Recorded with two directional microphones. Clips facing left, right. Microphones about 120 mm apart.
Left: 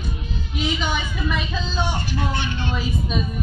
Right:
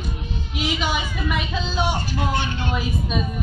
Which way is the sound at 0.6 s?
10° right (ahead or behind).